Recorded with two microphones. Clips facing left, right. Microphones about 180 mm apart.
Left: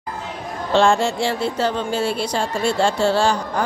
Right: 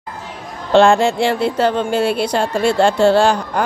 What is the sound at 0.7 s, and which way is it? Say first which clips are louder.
Speech: right 5 dB; 60° right (ahead or behind).